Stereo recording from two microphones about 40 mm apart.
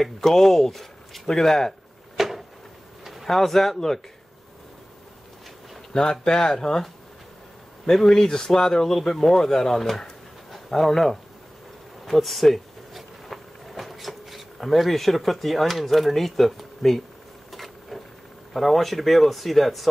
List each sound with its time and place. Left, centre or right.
0.0 s speech: centre
2.1 s a sound: centre
3.0 s vehicle: centre
3.3 s speech: centre
5.9 s speech: centre
7.9 s speech: centre
12.1 s a sound: centre
18.5 s speech: centre